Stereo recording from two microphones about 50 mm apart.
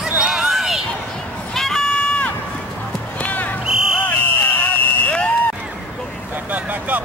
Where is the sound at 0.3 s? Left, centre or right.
Centre.